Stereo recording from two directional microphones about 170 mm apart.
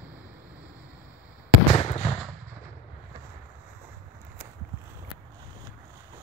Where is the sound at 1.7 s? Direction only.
40° left (ahead or behind).